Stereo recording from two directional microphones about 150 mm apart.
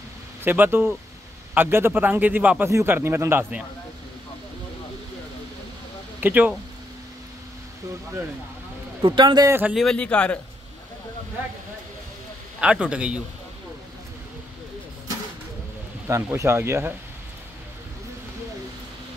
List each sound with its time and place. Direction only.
0.4 s a man's voice: 15° right (ahead or behind)
6.2 s a man's voice: 10° right (ahead or behind)
9.0 s a man's voice: 30° right (ahead or behind)
9.5 s a man's voice: 10° right (ahead or behind)
9.8 s speech: 5° left (ahead or behind)
12.5 s a man's voice: 5° right (ahead or behind)
16.1 s a man's voice: 20° right (ahead or behind)